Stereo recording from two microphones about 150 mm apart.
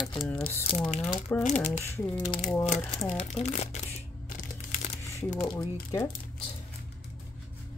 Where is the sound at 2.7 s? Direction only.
5° left (ahead or behind).